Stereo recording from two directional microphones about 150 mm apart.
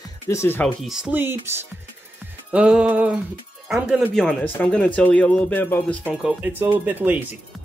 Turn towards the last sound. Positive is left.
turn(degrees=-10)  # may be behind; listen again after turning